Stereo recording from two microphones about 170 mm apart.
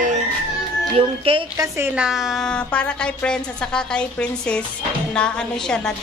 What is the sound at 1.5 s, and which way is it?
A woman's voice, 15° right (ahead or behind).